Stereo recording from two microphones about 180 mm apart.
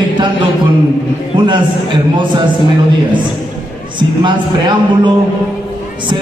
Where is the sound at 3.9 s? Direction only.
25° right (ahead or behind).